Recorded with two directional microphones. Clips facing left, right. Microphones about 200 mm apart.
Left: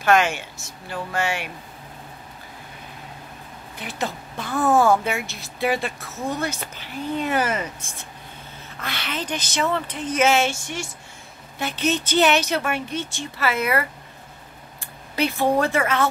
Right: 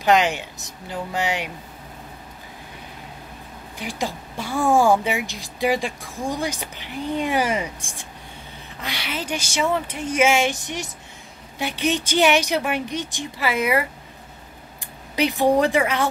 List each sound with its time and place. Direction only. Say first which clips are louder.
0.0 s a woman's voice: right 1 dB; 15° right (ahead or behind)
3.7 s a woman's voice: right 1 dB; 10° right (ahead or behind)
15.1 s a woman's voice: right 2 dB; 15° right (ahead or behind)